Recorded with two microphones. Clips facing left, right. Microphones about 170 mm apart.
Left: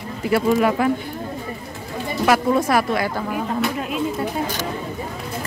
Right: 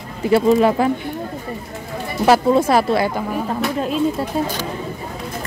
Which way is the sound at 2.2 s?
30° right (ahead or behind).